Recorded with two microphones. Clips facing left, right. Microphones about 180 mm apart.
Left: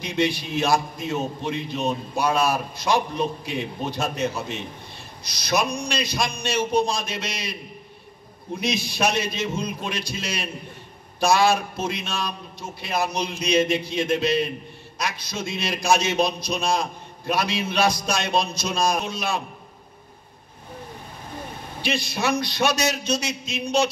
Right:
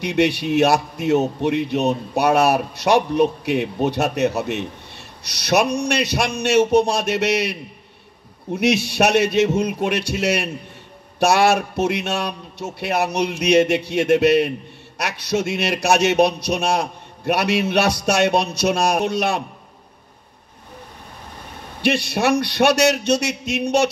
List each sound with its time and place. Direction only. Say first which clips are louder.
0.0 s a man's voice: right 5 dB; 70° right (ahead or behind)
8.5 s a man's voice: right 8 dB; 70° right (ahead or behind)
21.8 s a man's voice: right 6 dB; 70° right (ahead or behind)